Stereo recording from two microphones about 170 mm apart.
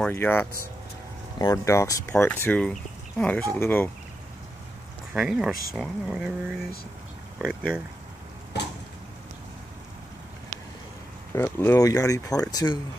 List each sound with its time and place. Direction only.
0.0 s speech: 10° left (ahead or behind)
5.1 s speech: centre (ahead or behind)
11.3 s speech: 15° left (ahead or behind)